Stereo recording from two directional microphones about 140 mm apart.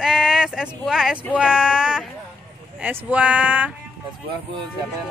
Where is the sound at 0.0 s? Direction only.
5° right (ahead or behind).